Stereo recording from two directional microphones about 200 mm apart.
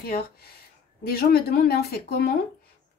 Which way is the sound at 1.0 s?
50° left (ahead or behind).